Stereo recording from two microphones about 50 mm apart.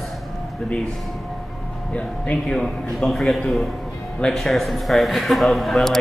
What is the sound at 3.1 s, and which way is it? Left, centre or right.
Speech, centre.